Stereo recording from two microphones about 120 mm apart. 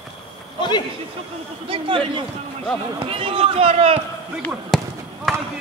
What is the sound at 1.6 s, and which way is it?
Speech, 45° right (ahead or behind).